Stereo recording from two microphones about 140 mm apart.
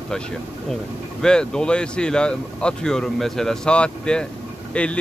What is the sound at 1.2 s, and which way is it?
Speech, 5° left (ahead or behind).